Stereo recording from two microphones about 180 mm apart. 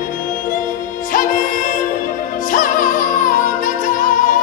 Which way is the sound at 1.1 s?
50° left (ahead or behind).